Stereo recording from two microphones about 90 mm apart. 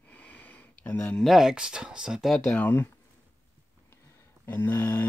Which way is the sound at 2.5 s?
20° left (ahead or behind).